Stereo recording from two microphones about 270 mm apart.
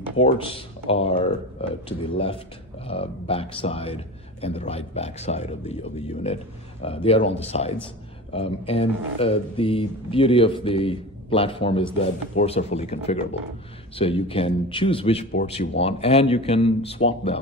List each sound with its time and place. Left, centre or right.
0.2 s a man's voice: left